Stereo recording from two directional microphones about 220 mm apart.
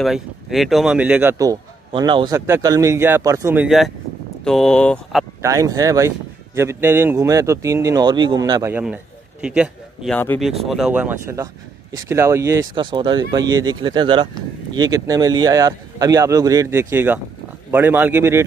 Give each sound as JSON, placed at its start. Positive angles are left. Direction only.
{"t": 0.0, "sound": "speech", "side_deg": 0}
{"t": 5.4, "sound": "speech", "side_deg": -15}
{"t": 10.1, "sound": "speech", "side_deg": 10}
{"t": 10.7, "sound": "speech", "side_deg": -5}